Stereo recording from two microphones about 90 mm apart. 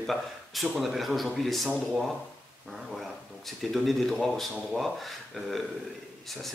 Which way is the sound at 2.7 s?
Centre (ahead or behind).